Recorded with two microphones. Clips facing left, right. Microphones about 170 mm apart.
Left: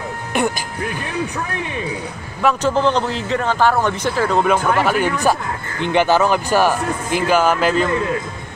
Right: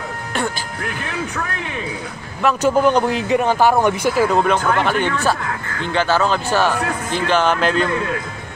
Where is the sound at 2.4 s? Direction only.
Centre (ahead or behind).